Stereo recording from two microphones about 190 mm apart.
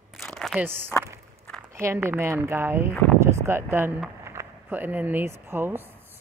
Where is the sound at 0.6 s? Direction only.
10° right (ahead or behind).